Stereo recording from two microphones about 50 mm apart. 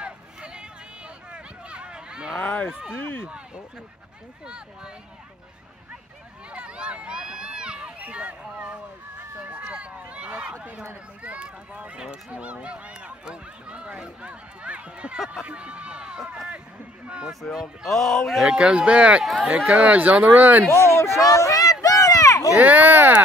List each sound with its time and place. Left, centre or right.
0.0 s a sound: centre
2.4 s speech: left
2.7 s speech: centre
6.5 s run: right
8.0 s speech: right
15.1 s speech: centre
15.4 s speech: right
17.3 s speech: centre
18.5 s speech: centre
19.2 s speech: centre
19.8 s a child's voice: right
20.7 s speech: left
21.8 s a sound: left
22.6 s a child's voice: right